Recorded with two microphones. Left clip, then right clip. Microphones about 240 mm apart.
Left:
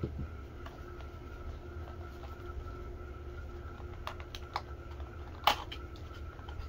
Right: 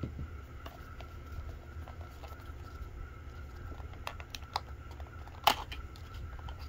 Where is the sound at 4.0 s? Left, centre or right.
Right.